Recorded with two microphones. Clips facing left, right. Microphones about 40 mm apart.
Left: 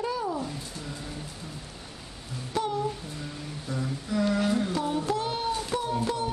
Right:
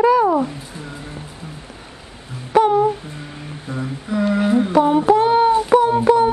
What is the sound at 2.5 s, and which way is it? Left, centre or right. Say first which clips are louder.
Humming: right 15 dB; right.